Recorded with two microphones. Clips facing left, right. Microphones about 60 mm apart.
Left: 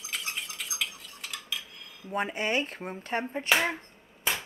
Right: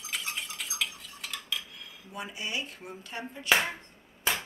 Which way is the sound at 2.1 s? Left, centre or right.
Left.